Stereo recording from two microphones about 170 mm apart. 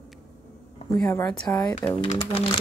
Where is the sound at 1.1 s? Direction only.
10° left (ahead or behind).